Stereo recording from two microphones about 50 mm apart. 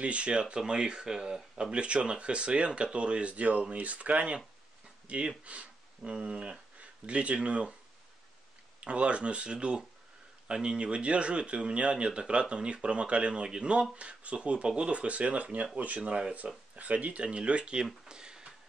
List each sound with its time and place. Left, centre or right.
0.0 s speech: right
8.8 s speech: right
18.0 s a sound: centre